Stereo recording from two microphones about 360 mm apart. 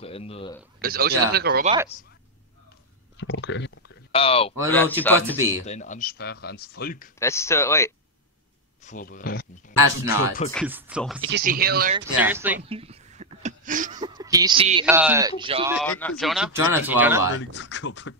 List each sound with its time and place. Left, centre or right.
0.0 s speech: centre
0.7 s speech: right
3.2 s speech: left
4.1 s speech: centre
5.0 s speech: centre
5.7 s speech: centre
7.2 s speech: centre
8.8 s speech: left
10.5 s speech: centre
11.1 s speech: right
12.2 s speech: centre
15.7 s speech: centre
17.3 s speech: left